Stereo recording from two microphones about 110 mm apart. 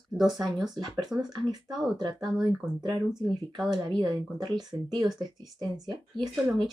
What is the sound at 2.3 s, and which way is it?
Speech, 40° right (ahead or behind).